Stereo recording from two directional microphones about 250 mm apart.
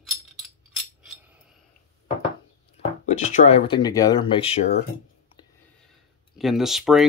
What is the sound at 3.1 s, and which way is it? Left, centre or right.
Speech, left.